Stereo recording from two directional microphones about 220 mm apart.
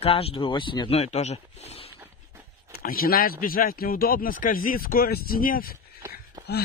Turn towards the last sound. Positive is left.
turn(degrees=-15)  # may be behind; listen again after turning